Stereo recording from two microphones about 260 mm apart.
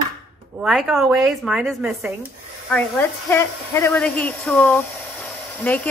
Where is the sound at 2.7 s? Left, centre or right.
Centre.